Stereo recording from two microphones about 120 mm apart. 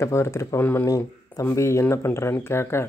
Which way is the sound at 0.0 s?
25° left (ahead or behind).